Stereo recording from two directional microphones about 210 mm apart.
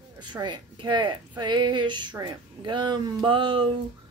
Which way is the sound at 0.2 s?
20° right (ahead or behind).